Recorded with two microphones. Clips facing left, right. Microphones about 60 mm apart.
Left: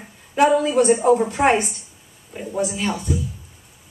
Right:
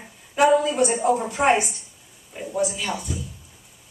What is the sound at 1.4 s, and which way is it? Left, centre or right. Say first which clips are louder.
Speech: right 1 dB; left.